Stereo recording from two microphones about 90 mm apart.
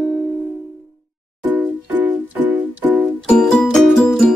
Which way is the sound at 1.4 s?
20° right (ahead or behind).